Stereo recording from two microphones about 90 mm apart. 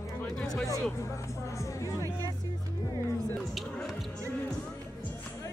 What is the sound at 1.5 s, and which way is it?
Speech, 35° left (ahead or behind).